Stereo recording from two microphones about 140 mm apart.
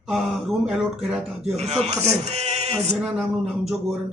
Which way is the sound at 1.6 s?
50° right (ahead or behind).